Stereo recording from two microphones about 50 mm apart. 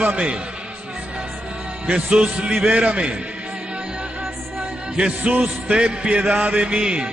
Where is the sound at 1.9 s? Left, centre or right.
Right.